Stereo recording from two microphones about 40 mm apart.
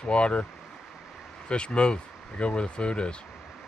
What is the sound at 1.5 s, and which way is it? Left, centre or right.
Speech, left.